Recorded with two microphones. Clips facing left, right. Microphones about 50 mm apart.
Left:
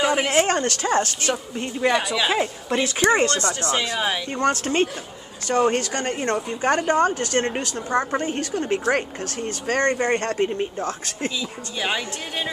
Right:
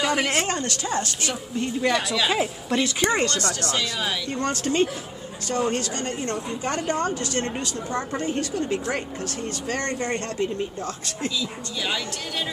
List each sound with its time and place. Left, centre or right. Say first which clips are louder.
0.0 s speech: left 3 dB; centre
0.5 s a woman's voice: left 5 dB; left
1.3 s a woman's voice: even; centre
3.1 s a woman's voice: left 4 dB; left